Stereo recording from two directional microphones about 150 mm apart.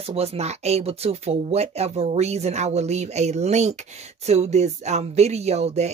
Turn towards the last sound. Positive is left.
turn(degrees=-45)  # may be behind; listen again after turning